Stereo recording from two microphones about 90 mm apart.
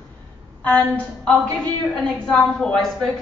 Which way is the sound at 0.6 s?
15° left (ahead or behind).